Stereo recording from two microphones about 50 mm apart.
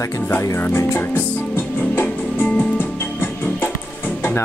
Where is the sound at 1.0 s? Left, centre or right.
Left.